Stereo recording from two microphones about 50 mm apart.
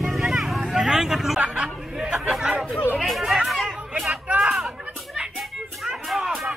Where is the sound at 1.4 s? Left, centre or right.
Right.